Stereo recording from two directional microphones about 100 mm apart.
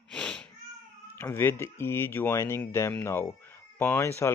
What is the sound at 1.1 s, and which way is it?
Speech, 25° left (ahead or behind).